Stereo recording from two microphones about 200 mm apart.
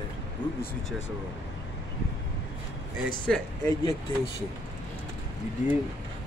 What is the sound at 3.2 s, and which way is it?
Speech, 5° left (ahead or behind).